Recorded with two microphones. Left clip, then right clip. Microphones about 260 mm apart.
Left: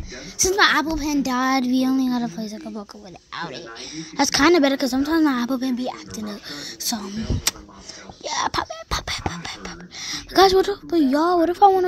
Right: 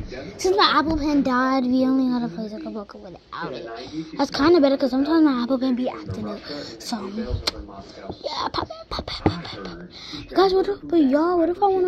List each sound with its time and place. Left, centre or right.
0.4 s a woman's voice: left